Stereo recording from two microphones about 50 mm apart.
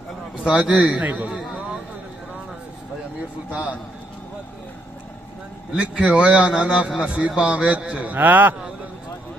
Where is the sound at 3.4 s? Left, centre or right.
Right.